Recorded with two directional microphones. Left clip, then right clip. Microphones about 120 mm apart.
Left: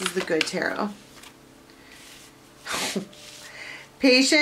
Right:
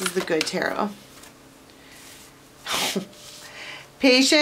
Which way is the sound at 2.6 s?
20° right (ahead or behind).